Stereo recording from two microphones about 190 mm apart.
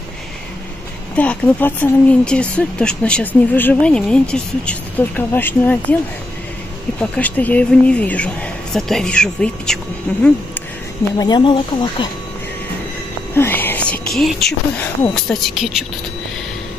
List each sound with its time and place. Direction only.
1.1 s speech: 5° left (ahead or behind)
7.0 s a woman's voice: 5° left (ahead or behind)
11.1 s speech: 20° left (ahead or behind)
13.3 s a woman's voice: 10° left (ahead or behind)